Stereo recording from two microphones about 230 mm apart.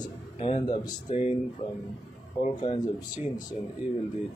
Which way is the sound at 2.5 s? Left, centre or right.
Left.